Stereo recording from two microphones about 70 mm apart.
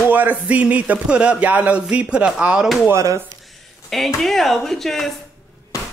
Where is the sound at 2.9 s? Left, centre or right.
Right.